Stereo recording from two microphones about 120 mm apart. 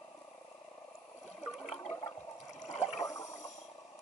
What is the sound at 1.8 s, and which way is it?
Toilet flush, 55° left (ahead or behind).